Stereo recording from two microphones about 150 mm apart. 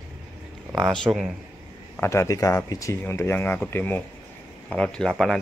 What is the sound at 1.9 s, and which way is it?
Speech, 20° left (ahead or behind).